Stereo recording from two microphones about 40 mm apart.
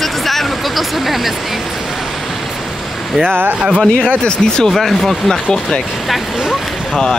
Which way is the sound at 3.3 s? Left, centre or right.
Right.